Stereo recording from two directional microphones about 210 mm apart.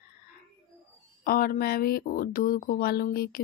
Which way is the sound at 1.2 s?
45° left (ahead or behind).